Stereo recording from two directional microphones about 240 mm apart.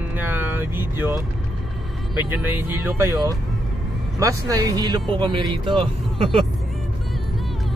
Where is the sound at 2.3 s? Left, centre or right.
Centre.